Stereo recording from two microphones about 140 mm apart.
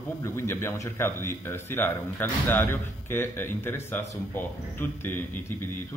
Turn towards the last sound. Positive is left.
turn(degrees=15)  # may be behind; listen again after turning